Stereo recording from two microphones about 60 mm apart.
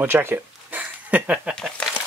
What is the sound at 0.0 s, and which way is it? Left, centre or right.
Speech, right.